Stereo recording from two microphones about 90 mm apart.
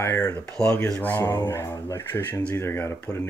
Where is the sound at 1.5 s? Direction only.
30° left (ahead or behind).